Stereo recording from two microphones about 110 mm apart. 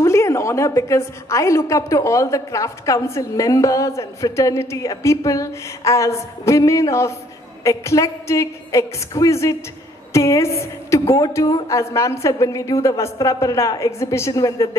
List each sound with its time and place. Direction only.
0.0 s a woman's voice: 25° left (ahead or behind)